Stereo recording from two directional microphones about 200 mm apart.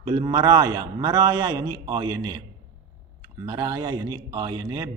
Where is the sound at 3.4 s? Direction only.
20° right (ahead or behind).